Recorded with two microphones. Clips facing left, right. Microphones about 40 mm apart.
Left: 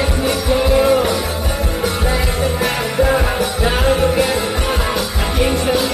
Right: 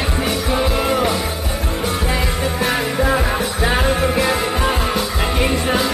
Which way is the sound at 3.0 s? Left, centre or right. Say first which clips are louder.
Left 2 dB; centre.